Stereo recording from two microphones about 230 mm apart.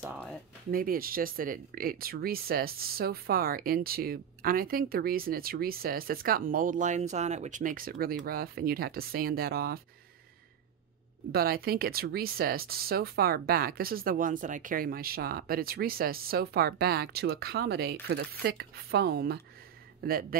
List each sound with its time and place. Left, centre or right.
0.0 s speech: centre
0.7 s speech: right
11.3 s speech: right